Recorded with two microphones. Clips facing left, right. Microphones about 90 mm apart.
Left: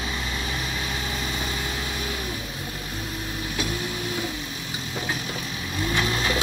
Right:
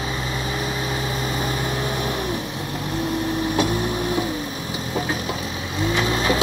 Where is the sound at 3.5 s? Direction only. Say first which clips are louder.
Right 8 dB; 50° right (ahead or behind).